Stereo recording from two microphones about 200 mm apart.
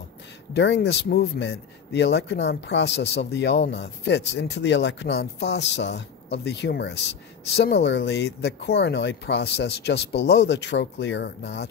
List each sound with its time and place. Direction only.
0.5 s speech: 60° left (ahead or behind)